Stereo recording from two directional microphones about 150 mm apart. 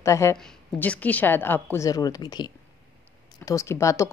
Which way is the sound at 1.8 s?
25° left (ahead or behind).